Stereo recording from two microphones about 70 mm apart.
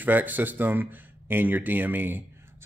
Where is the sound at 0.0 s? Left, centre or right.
Right.